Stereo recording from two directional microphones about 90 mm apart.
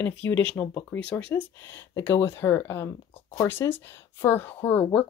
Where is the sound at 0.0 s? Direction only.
20° left (ahead or behind).